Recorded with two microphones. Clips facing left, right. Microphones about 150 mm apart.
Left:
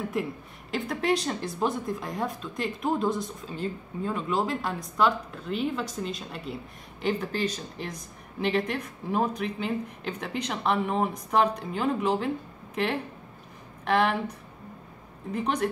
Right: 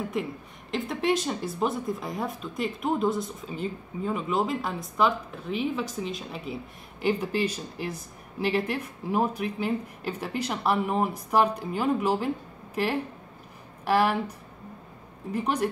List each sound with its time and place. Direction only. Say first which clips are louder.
0.1 s a woman's voice: even; centre (ahead or behind)
15.3 s a woman's voice: right 1 dB; 5° right (ahead or behind)